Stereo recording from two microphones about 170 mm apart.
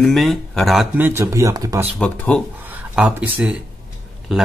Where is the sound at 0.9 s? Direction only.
15° right (ahead or behind).